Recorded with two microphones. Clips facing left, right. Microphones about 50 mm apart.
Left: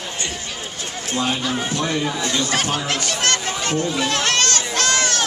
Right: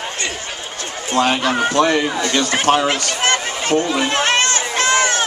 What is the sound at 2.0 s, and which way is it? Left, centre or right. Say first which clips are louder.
Speech: right 3 dB; right.